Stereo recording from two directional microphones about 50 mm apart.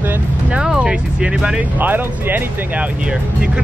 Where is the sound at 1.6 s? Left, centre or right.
Right.